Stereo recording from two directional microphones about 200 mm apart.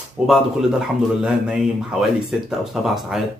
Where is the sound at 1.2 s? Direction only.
5° right (ahead or behind).